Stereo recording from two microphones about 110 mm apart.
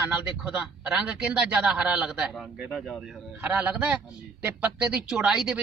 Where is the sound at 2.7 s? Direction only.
5° left (ahead or behind).